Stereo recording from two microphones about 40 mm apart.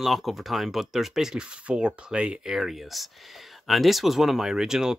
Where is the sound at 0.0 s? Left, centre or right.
Centre.